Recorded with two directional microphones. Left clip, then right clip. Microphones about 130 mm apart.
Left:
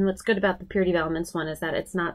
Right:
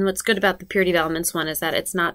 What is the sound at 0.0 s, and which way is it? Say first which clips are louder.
Speech: right 4 dB; 20° right (ahead or behind).